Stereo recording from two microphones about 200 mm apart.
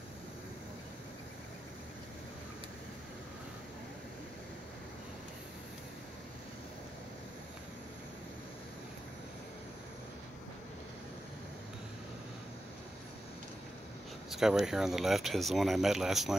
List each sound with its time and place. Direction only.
14.3 s speech: centre (ahead or behind)